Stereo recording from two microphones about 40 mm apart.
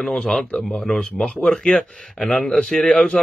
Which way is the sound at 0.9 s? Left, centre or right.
Left.